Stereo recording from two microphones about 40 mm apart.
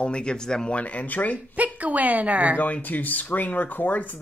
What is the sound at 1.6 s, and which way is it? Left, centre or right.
A woman's voice, right.